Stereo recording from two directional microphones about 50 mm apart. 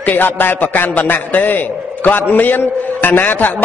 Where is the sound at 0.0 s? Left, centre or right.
Left.